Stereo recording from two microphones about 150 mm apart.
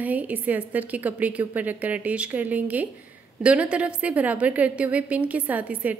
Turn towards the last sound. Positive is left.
turn(degrees=-10)  # may be behind; listen again after turning